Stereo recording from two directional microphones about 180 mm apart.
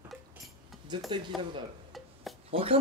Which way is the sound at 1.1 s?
25° right (ahead or behind).